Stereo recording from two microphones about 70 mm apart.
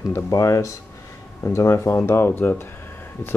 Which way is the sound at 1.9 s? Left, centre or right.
Left.